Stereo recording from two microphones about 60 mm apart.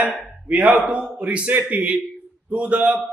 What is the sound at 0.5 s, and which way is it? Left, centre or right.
A man's voice, right.